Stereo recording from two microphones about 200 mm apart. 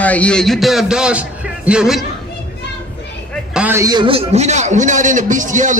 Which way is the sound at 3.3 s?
5° right (ahead or behind).